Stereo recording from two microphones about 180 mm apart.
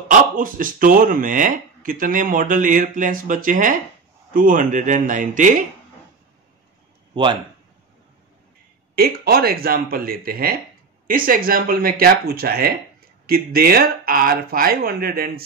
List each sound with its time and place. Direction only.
0.4 s speech: 50° right (ahead or behind)
8.9 s speech: 60° right (ahead or behind)